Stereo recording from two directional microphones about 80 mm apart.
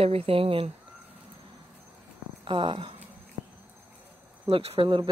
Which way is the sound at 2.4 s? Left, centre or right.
Right.